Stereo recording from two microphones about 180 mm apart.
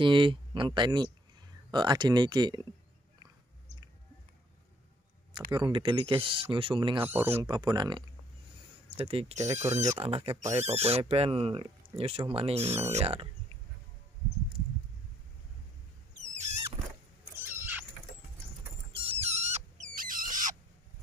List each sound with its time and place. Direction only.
0.0 s speech: 25° right (ahead or behind)
5.5 s speech: 25° right (ahead or behind)
7.0 s speech: 10° right (ahead or behind)
7.4 s speech: 25° right (ahead or behind)
10.3 s speech: 15° right (ahead or behind)
10.6 s speech: 35° right (ahead or behind)
16.2 s rodents: 40° right (ahead or behind)
17.4 s cat: 10° right (ahead or behind)
19.0 s rodents: 35° right (ahead or behind)